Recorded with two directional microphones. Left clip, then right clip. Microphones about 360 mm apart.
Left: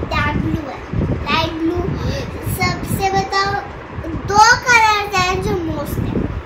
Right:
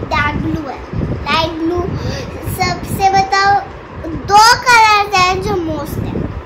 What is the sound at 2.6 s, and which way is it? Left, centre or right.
Child singing, centre.